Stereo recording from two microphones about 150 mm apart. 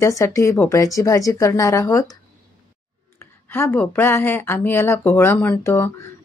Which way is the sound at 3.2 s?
15° left (ahead or behind).